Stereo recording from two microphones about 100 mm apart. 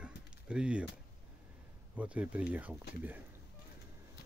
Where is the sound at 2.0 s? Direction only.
15° right (ahead or behind).